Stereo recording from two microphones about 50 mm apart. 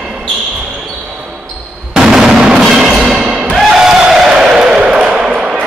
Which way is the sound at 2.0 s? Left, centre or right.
Centre.